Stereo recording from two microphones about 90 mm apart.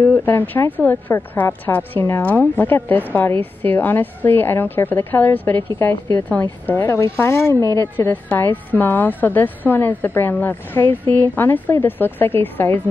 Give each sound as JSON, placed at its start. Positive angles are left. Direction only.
{"t": 0.1, "sound": "a woman's voice", "side_deg": 20}
{"t": 8.0, "sound": "a woman's voice", "side_deg": 20}